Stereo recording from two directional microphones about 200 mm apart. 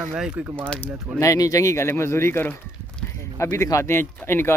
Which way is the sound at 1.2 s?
15° left (ahead or behind).